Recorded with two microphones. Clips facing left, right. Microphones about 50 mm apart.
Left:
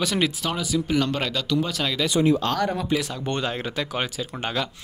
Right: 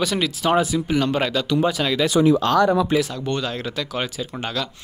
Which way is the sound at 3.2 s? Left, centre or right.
Left.